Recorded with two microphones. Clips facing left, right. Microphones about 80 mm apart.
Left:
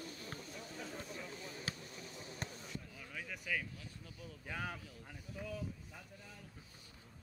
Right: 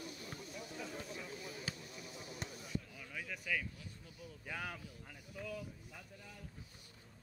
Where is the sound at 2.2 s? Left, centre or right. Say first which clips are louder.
Left 1 dB; left.